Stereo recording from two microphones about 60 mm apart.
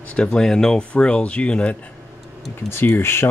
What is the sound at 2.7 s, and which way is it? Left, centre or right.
Speech, left.